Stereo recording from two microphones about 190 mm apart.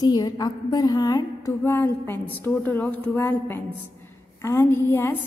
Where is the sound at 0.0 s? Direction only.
20° left (ahead or behind).